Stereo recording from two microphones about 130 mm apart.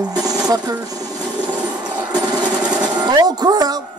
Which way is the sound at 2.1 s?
35° right (ahead or behind).